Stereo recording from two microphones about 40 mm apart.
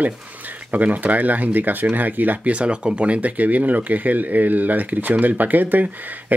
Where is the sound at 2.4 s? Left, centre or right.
Right.